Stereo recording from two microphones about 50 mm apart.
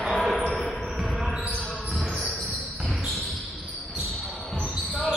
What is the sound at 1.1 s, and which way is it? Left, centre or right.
Basketball bounce, centre.